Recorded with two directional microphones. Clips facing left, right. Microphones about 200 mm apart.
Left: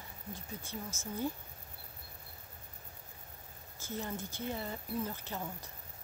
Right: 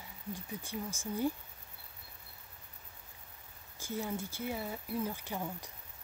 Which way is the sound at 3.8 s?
10° right (ahead or behind).